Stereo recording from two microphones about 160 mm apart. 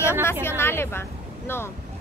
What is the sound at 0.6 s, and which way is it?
Speech, 15° left (ahead or behind).